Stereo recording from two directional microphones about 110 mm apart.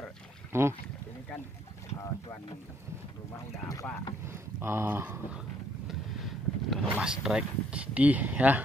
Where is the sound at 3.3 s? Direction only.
30° left (ahead or behind).